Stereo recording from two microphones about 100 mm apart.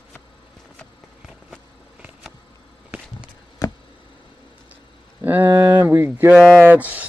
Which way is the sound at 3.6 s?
35° left (ahead or behind).